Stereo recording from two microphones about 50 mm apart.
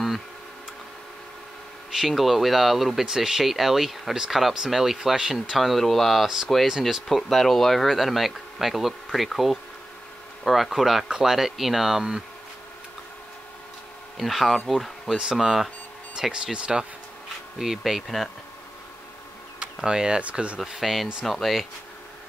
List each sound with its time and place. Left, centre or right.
2.0 s speech: centre
14.1 s speech: centre
16.2 s speech: centre
17.6 s speech: centre
19.6 s speech: centre
20.5 s speech: centre